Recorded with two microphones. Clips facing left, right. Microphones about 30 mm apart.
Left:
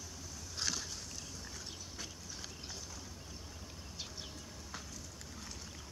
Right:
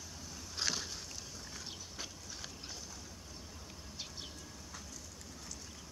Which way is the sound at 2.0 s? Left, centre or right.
Centre.